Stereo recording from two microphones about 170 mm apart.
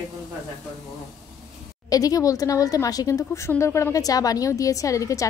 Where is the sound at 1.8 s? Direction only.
20° left (ahead or behind).